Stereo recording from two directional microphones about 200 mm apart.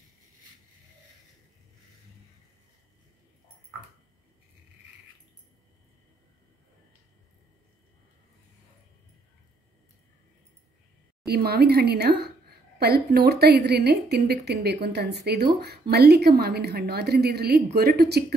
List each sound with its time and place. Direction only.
11.2 s a woman's voice: 50° right (ahead or behind)